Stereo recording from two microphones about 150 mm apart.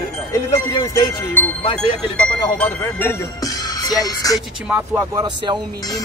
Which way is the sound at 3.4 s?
25° left (ahead or behind).